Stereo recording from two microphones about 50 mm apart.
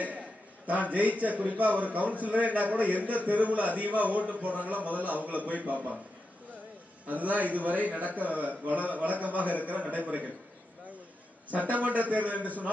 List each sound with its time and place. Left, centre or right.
0.7 s a man's voice: right
7.1 s a man's voice: right
11.4 s a man's voice: right